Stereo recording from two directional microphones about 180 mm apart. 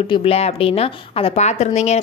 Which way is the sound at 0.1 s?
30° left (ahead or behind).